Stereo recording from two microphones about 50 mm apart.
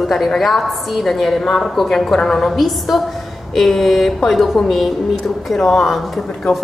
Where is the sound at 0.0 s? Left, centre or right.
Centre.